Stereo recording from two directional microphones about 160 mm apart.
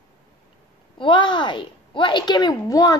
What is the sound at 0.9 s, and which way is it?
Speech, 30° left (ahead or behind).